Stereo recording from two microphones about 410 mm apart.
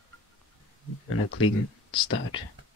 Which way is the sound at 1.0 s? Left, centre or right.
Left.